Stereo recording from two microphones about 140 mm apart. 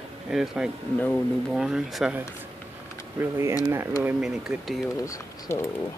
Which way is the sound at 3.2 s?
15° right (ahead or behind).